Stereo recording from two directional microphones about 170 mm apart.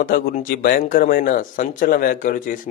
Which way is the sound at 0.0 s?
55° left (ahead or behind).